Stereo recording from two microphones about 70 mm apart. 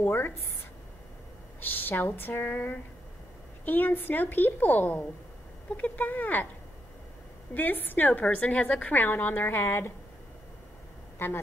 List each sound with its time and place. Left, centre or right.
0.0 s a woman's voice: left
1.6 s a woman's voice: left
7.5 s a woman's voice: left
8.9 s a woman's voice: left
11.1 s a man's voice: left